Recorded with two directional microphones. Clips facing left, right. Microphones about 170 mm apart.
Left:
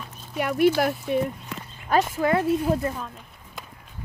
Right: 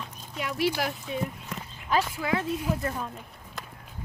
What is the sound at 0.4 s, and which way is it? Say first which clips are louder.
Speech: left 8 dB; 55° left (ahead or behind).